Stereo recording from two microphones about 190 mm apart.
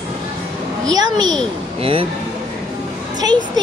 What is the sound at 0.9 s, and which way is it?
A child's voice, 20° right (ahead or behind).